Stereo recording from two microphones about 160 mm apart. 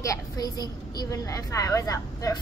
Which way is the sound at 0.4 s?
25° left (ahead or behind).